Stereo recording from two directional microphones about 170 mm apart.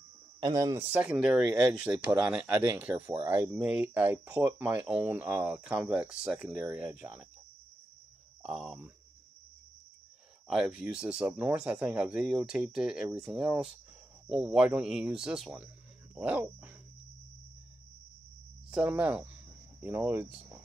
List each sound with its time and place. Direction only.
0.4 s speech: 20° right (ahead or behind)
0.9 s speech: 5° right (ahead or behind)
6.5 s speech: 20° right (ahead or behind)
8.4 s speech: 5° right (ahead or behind)
10.5 s speech: 5° right (ahead or behind)
18.7 s speech: 5° right (ahead or behind)